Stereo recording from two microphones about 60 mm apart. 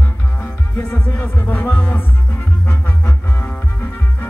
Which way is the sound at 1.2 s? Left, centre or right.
Left.